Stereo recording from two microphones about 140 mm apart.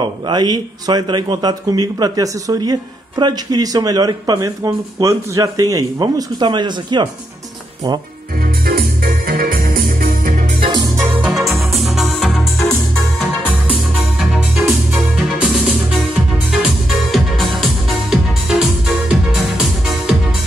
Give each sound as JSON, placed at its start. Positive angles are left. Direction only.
{"t": 0.3, "sound": "speech", "side_deg": -30}
{"t": 8.6, "sound": "organ", "side_deg": -90}
{"t": 10.6, "sound": "music", "side_deg": -35}
{"t": 11.2, "sound": "music", "side_deg": 0}
{"t": 14.7, "sound": "music", "side_deg": 0}
{"t": 16.5, "sound": "music", "side_deg": 0}